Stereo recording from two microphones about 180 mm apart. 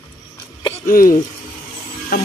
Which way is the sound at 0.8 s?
50° left (ahead or behind).